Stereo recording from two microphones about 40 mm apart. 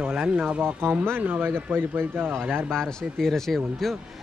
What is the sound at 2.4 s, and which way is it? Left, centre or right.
Speech, right.